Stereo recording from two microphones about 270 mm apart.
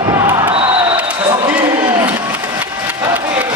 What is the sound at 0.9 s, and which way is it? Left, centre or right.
Basketball bounce, centre.